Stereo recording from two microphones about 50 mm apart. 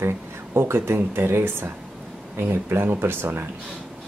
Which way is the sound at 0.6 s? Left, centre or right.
Right.